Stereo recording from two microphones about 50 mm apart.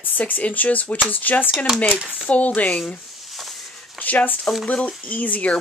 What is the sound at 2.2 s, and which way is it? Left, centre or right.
Speech, left.